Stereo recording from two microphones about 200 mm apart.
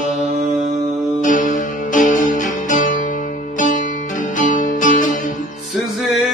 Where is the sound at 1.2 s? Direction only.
40° left (ahead or behind).